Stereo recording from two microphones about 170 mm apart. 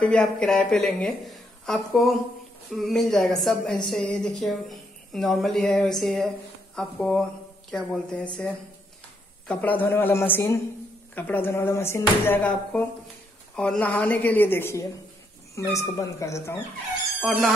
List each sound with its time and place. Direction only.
0.0 s a woman's voice: 5° left (ahead or behind)
9.5 s speech: 10° left (ahead or behind)
17.2 s speech: centre (ahead or behind)